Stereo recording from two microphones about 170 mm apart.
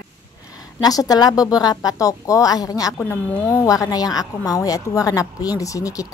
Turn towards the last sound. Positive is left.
turn(degrees=20)  # may be behind; listen again after turning